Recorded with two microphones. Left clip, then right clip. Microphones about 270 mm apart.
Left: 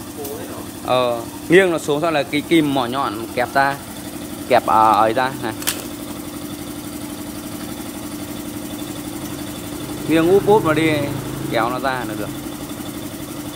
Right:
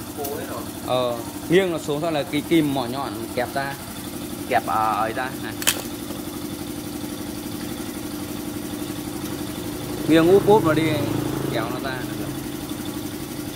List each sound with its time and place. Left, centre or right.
0.8 s speech: centre
4.5 s speech: left
10.0 s speech: centre